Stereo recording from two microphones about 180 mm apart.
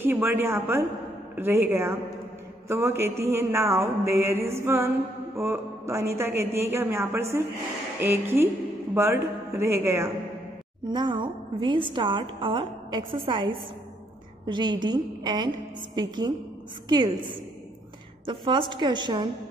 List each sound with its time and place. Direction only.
0.0 s mantra: 10° right (ahead or behind)
10.9 s a woman's voice: 25° right (ahead or behind)